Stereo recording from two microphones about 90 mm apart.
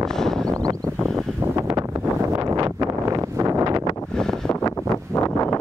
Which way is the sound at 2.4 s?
45° right (ahead or behind).